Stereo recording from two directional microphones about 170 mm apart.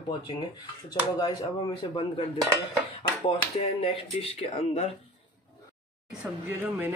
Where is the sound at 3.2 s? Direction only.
30° left (ahead or behind).